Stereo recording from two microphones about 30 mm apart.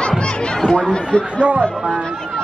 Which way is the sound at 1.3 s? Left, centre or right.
Right.